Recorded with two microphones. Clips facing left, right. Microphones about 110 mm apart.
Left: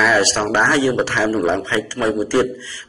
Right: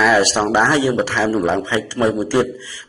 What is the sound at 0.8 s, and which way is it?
Speech, centre (ahead or behind).